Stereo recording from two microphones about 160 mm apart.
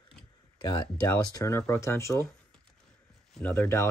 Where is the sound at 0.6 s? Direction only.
25° left (ahead or behind).